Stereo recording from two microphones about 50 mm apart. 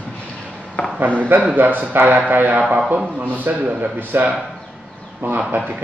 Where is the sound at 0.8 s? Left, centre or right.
Left.